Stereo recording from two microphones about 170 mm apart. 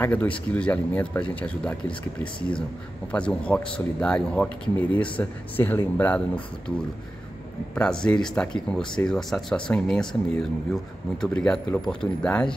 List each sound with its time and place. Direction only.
0.0 s speech: 10° left (ahead or behind)
3.1 s speech: 5° left (ahead or behind)
7.7 s speech: 5° left (ahead or behind)